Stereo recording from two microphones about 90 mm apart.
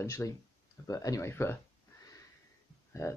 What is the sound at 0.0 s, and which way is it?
Speech, 35° left (ahead or behind).